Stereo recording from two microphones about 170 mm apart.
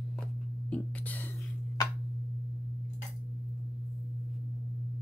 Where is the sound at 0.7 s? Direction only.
10° left (ahead or behind).